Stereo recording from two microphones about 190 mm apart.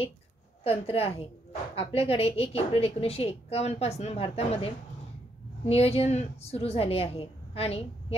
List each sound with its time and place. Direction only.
0.7 s a woman's voice: 30° left (ahead or behind)